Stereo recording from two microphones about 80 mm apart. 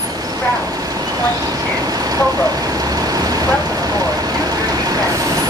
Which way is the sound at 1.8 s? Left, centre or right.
Right.